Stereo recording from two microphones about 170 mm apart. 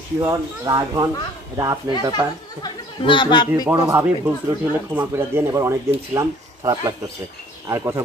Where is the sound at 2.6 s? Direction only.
25° left (ahead or behind).